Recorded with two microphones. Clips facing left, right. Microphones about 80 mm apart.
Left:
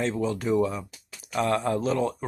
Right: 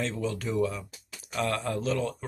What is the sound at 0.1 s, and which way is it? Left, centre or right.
Speech, centre.